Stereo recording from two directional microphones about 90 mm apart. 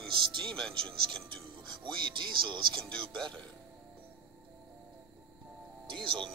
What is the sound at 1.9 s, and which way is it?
Speech, 60° right (ahead or behind).